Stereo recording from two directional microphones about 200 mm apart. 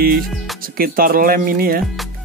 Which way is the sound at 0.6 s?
45° right (ahead or behind).